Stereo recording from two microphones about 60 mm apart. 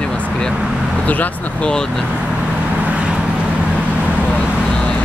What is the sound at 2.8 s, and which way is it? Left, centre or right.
Vehicle, centre.